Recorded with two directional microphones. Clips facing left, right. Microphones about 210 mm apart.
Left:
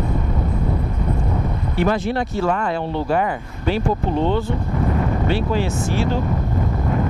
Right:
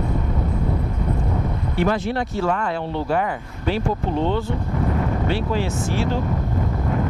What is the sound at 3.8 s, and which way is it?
Speech, 30° left (ahead or behind).